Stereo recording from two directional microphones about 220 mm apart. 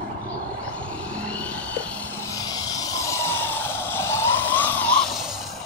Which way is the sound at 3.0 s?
15° left (ahead or behind).